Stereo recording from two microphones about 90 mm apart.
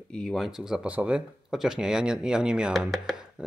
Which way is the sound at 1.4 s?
5° right (ahead or behind).